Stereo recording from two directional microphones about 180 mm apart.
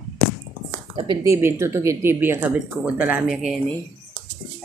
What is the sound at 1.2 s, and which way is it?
Speech, 15° right (ahead or behind).